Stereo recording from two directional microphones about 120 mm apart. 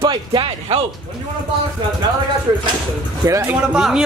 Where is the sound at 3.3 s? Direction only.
20° right (ahead or behind).